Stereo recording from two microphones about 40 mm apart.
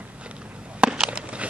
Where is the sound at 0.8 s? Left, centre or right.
Right.